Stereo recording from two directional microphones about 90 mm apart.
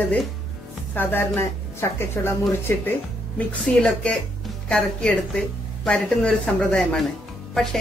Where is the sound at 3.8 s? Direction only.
10° left (ahead or behind).